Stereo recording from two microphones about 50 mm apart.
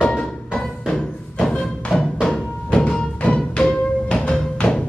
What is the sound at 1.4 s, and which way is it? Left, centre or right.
Music, centre.